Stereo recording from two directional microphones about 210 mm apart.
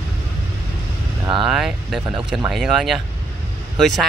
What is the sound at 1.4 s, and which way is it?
Speech, centre (ahead or behind).